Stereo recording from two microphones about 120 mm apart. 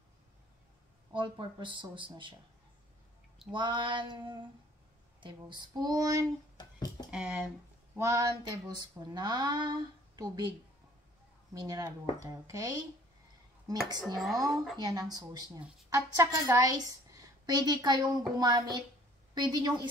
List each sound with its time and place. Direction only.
1.1 s speech: 40° right (ahead or behind)
3.5 s speech: 40° right (ahead or behind)
5.7 s speech: 35° right (ahead or behind)
6.5 s a sound: 35° left (ahead or behind)
7.1 s speech: 10° right (ahead or behind)
8.0 s a sound: 30° right (ahead or behind)
8.5 s speech: 35° right (ahead or behind)
11.5 s speech: 35° right (ahead or behind)
14.5 s speech: centre (ahead or behind)
14.8 s speech: 35° right (ahead or behind)